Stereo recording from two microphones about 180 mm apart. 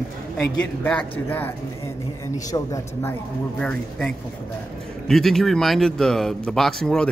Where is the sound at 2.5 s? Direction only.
15° left (ahead or behind).